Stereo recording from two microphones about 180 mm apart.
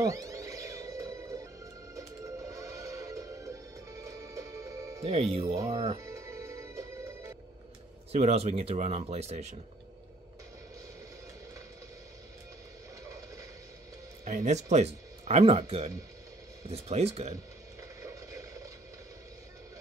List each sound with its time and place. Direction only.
0.0 s music: 15° right (ahead or behind)
5.0 s speech: 35° right (ahead or behind)
5.9 s music: 15° right (ahead or behind)
8.1 s speech: 35° right (ahead or behind)
14.2 s speech: 45° right (ahead or behind)
18.0 s a sound: 15° right (ahead or behind)